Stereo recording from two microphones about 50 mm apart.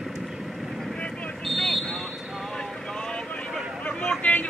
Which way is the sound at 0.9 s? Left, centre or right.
Left.